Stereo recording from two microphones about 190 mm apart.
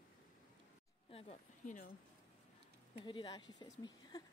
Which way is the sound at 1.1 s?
35° left (ahead or behind).